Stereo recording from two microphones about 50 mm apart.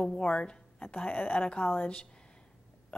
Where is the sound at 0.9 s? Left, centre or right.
Left.